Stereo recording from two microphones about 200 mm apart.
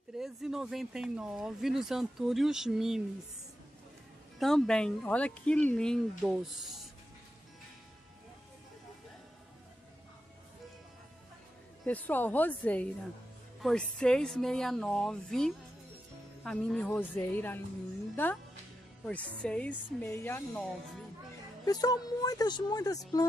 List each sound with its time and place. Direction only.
0.2 s speech: centre (ahead or behind)
4.4 s speech: centre (ahead or behind)
11.8 s a woman's voice: 10° left (ahead or behind)
21.6 s a woman's voice: 20° left (ahead or behind)